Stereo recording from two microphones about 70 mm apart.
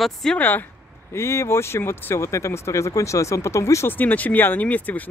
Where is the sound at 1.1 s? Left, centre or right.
Left.